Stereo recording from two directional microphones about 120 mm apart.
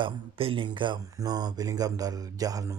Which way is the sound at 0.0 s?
45° right (ahead or behind).